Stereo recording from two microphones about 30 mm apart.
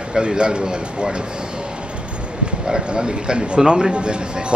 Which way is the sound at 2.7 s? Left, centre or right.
Right.